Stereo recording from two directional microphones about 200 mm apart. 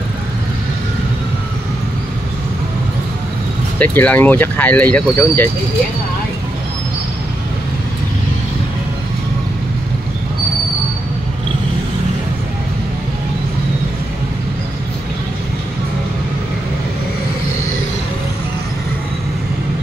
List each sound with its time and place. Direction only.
3.8 s speech: 10° left (ahead or behind)